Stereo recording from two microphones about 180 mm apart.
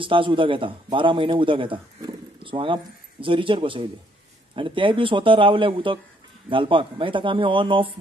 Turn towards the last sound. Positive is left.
turn(degrees=-25)  # may be behind; listen again after turning